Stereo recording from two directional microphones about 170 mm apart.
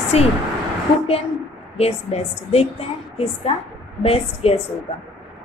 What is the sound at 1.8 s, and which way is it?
A woman's voice, 35° left (ahead or behind).